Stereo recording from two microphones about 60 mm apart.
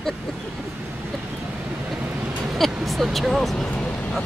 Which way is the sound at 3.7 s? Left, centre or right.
Left.